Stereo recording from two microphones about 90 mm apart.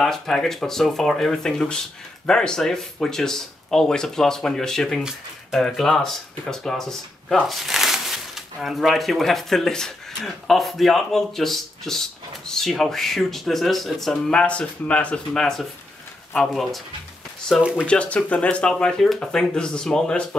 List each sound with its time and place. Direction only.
0.0 s speech: 5° left (ahead or behind)
17.8 s speech: 15° left (ahead or behind)